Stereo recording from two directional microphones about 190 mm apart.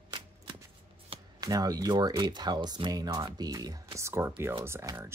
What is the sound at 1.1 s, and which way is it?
Speech, 20° right (ahead or behind).